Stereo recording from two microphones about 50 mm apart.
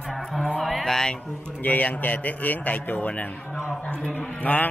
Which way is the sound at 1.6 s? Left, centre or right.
Left.